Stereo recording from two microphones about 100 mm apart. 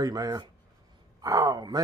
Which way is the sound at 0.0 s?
40° right (ahead or behind).